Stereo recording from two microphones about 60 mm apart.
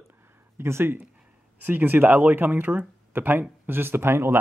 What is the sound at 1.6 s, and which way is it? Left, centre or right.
Speech, right.